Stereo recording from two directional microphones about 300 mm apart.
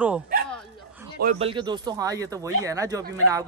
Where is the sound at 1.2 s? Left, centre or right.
Centre.